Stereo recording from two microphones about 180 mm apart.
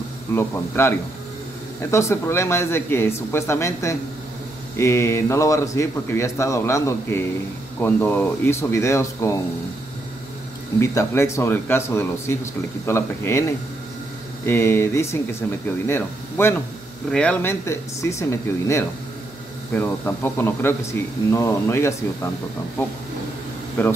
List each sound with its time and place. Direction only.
0.3 s speech: 15° left (ahead or behind)
10.8 s speech: 15° left (ahead or behind)